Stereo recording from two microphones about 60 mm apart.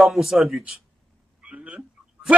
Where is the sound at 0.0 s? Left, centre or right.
Centre.